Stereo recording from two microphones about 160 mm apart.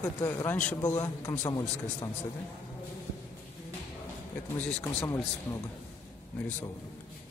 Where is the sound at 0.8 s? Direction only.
25° left (ahead or behind).